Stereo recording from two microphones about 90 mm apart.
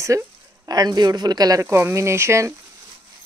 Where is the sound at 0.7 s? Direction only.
50° right (ahead or behind).